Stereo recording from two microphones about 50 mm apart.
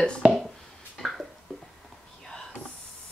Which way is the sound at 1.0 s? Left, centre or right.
Centre.